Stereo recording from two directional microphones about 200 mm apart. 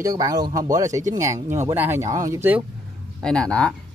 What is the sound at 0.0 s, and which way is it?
Speech, 20° right (ahead or behind).